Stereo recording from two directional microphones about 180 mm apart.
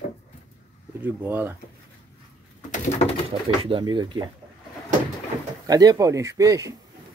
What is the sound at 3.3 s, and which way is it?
Speech, 30° right (ahead or behind).